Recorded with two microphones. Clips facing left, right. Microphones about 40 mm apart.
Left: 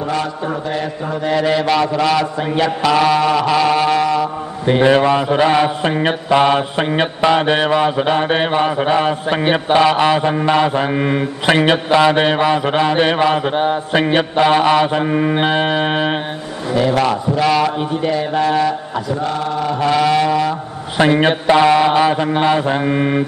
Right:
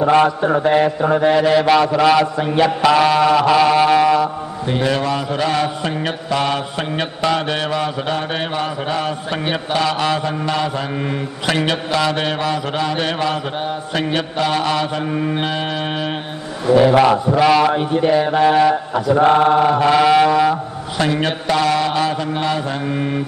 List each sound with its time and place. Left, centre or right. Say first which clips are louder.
0.0 s mantra: right 7 dB; right
1.3 s mantra: left 1 dB; centre
2.3 s mantra: right 1 dB; centre
2.6 s mantra: right 1 dB; centre
4.6 s mantra: left 7 dB; left
16.7 s mantra: right 4 dB; centre
17.4 s a man's voice: right 1 dB; centre
19.1 s mantra: right 10 dB; right
19.8 s a man's voice: left 2 dB; centre
21.0 s mantra: left 6 dB; left